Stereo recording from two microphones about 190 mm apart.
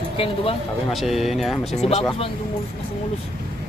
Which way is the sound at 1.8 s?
30° left (ahead or behind).